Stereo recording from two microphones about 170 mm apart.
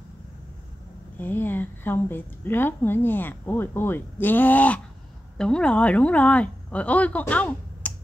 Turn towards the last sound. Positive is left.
turn(degrees=10)  # may be behind; listen again after turning